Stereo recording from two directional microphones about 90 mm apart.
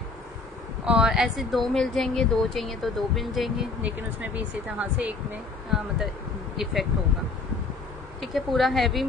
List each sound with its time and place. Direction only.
0.8 s speech: 5° right (ahead or behind)
3.8 s speech: 15° right (ahead or behind)
6.5 s speech: centre (ahead or behind)
8.2 s speech: centre (ahead or behind)